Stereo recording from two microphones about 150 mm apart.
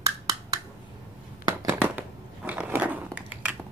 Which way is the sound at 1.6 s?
10° right (ahead or behind).